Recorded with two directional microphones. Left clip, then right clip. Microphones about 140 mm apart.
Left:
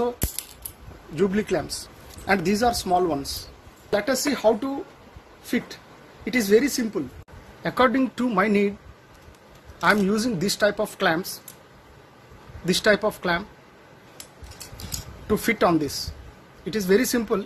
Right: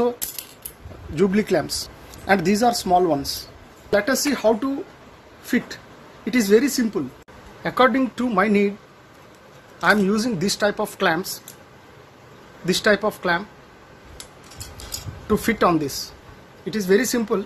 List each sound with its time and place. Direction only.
1.1 s speech: 5° right (ahead or behind)
6.2 s speech: centre (ahead or behind)
7.6 s a woman's voice: 15° left (ahead or behind)
9.8 s a woman's voice: 20° left (ahead or behind)
12.6 s a woman's voice: 20° left (ahead or behind)
15.2 s speech: 15° left (ahead or behind)
16.7 s a woman's voice: 30° left (ahead or behind)